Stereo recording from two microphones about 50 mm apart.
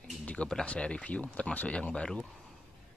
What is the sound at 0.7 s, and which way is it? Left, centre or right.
Speech, left.